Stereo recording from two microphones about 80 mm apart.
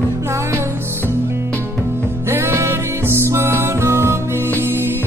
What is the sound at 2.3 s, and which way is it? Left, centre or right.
Music, right.